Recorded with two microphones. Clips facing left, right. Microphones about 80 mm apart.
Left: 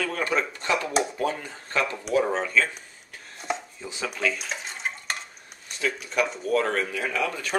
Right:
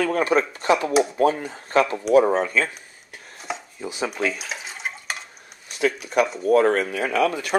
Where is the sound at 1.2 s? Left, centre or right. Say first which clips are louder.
Right 8 dB; right.